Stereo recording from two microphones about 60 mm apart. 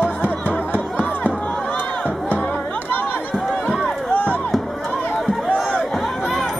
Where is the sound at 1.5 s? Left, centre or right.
Centre.